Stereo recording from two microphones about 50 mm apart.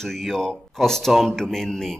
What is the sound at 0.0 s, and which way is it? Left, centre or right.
Speech, centre.